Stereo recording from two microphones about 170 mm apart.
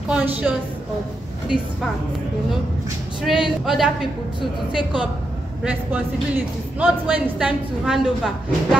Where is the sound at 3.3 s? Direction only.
Centre (ahead or behind).